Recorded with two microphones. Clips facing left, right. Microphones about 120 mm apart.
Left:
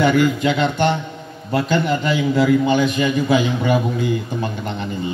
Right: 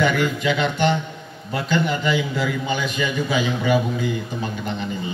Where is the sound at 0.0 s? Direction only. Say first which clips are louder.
Left 4 dB; 45° left (ahead or behind).